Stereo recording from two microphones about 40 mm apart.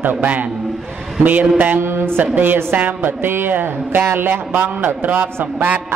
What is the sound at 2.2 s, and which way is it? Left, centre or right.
Music, right.